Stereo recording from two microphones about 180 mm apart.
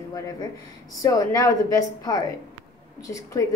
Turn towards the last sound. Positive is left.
turn(degrees=20)  # may be behind; listen again after turning